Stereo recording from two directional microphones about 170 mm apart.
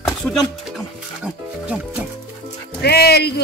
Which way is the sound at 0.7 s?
5° right (ahead or behind).